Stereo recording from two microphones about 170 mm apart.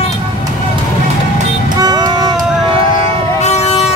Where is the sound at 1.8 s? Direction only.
25° right (ahead or behind).